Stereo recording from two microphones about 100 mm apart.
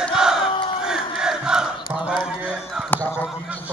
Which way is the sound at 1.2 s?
5° right (ahead or behind).